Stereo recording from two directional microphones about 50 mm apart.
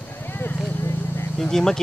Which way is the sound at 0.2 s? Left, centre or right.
Left.